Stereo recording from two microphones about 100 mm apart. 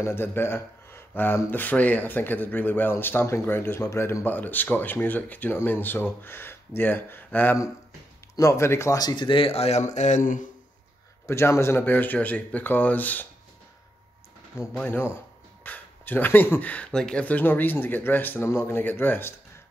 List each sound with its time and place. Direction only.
0.0 s speech: 20° left (ahead or behind)
8.4 s speech: 30° left (ahead or behind)
9.0 s speech: 50° left (ahead or behind); by 9.8 s 85° left
11.2 s speech: 25° left (ahead or behind)
14.8 s speech: 20° left (ahead or behind)